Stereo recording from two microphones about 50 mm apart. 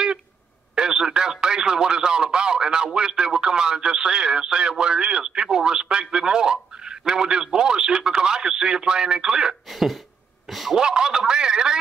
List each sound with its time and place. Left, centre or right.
0.7 s speech: centre
9.7 s a man's voice: centre
10.8 s speech: centre